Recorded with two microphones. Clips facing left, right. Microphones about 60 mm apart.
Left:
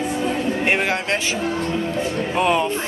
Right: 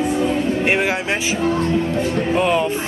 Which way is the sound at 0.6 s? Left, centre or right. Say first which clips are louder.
Right 2 dB; centre.